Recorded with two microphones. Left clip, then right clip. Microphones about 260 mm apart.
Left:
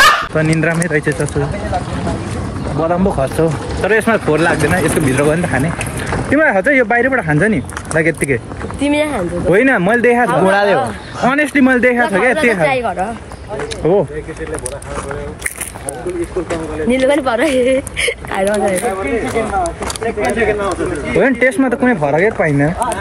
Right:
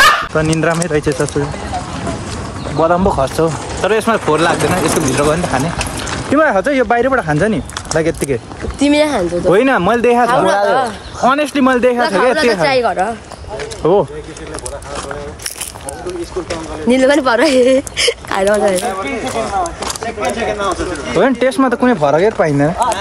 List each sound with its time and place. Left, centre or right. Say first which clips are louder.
0.0 s fowl: even; centre
0.3 s speech: right 1 dB; centre
2.8 s speech: right 3 dB; centre
8.7 s speech: right 3 dB; right
9.5 s speech: even; centre
10.3 s speech: even; right
11.2 s speech: even; centre
12.6 s speech: right 2 dB; right
13.8 s speech: right 1 dB; centre
16.9 s speech: right 3 dB; right
20.2 s speech: left 1 dB; right